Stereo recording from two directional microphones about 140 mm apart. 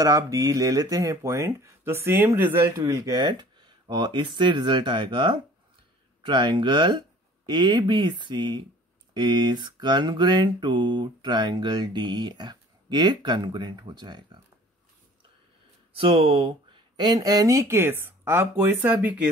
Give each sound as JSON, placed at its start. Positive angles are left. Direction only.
{"t": 0.0, "sound": "speech", "side_deg": -25}
{"t": 6.2, "sound": "mantra", "side_deg": -35}
{"t": 16.0, "sound": "speech", "side_deg": -40}